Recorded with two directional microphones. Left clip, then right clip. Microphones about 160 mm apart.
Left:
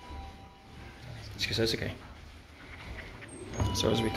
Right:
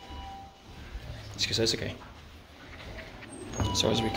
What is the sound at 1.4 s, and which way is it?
Speech, 5° right (ahead or behind).